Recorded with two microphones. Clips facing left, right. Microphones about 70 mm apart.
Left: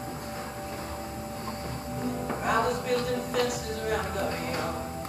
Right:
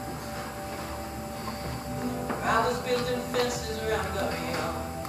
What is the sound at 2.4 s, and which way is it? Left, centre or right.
Music, centre.